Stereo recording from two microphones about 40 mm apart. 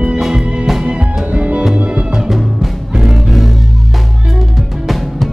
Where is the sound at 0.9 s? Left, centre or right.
Right.